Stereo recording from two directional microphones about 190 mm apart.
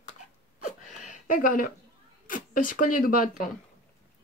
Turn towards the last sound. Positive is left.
turn(degrees=45)  # may be behind; listen again after turning